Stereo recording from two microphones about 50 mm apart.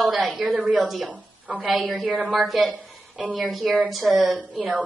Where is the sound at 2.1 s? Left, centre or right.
Centre.